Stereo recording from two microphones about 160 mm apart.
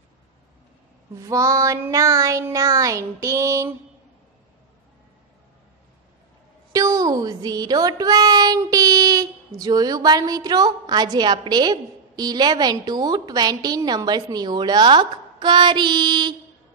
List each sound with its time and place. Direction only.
1.1 s a woman's voice: 20° right (ahead or behind)
6.7 s a woman's voice: 20° right (ahead or behind)